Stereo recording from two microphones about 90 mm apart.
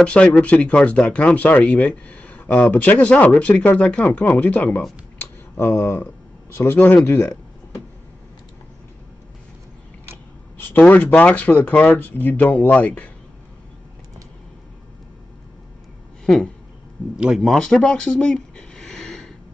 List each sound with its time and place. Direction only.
0.0 s speech: 10° left (ahead or behind)
5.6 s speech: 25° left (ahead or behind)
10.6 s speech: 20° left (ahead or behind)
17.2 s speech: 5° right (ahead or behind)